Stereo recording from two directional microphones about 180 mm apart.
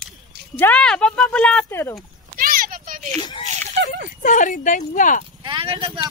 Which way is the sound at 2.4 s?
50° right (ahead or behind).